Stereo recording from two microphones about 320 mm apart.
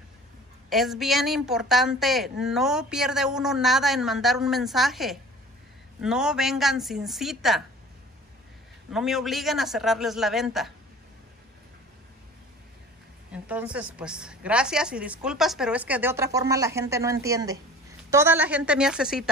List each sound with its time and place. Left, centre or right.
0.7 s a woman's voice: centre
8.9 s a woman's voice: centre
13.3 s a woman's voice: centre